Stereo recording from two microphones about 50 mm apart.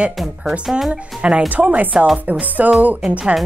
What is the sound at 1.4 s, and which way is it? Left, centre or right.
Speech, right.